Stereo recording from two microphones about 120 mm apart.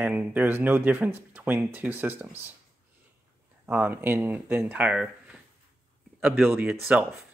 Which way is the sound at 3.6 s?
15° right (ahead or behind).